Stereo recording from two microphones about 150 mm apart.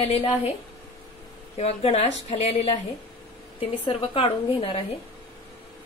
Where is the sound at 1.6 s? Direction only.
45° left (ahead or behind).